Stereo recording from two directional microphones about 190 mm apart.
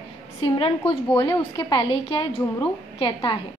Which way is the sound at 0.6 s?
30° left (ahead or behind).